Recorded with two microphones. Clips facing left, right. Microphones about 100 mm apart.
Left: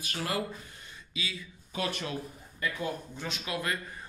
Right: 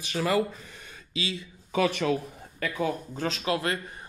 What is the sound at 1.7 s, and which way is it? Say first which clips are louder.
Speech: right 9 dB; 90° right.